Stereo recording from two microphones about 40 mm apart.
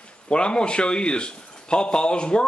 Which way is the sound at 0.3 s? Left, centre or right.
Left.